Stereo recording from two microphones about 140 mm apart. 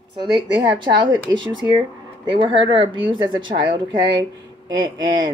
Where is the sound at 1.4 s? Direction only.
35° right (ahead or behind).